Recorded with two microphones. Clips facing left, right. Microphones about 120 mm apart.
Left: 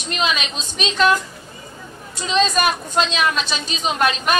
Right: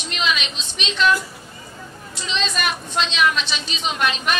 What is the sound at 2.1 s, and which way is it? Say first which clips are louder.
A woman's voice: left 7 dB; 40° left (ahead or behind).